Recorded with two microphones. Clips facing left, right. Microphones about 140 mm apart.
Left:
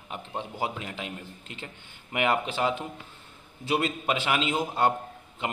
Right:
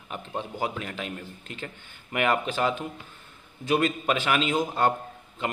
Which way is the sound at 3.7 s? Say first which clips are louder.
Right 3 dB; 25° left (ahead or behind).